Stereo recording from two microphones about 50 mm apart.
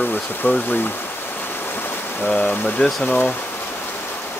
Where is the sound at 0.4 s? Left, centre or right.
Left.